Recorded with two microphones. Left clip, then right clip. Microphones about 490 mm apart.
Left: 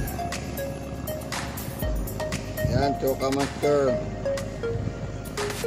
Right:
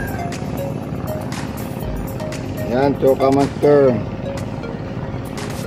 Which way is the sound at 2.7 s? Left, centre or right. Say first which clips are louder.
Right 10 dB; left.